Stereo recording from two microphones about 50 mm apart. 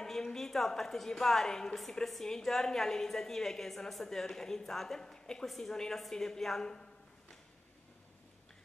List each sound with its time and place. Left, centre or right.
0.0 s a woman's voice: centre